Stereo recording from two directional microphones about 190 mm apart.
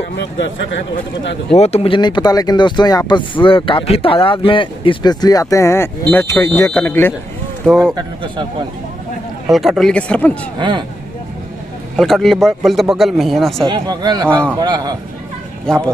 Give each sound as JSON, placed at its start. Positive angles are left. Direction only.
{"t": 1.5, "sound": "speech", "side_deg": 35}
{"t": 7.9, "sound": "speech", "side_deg": -25}
{"t": 9.5, "sound": "speech", "side_deg": 0}
{"t": 10.6, "sound": "speech", "side_deg": -25}
{"t": 12.0, "sound": "speech", "side_deg": 0}
{"t": 13.7, "sound": "speech", "side_deg": -20}
{"t": 15.6, "sound": "speech", "side_deg": 5}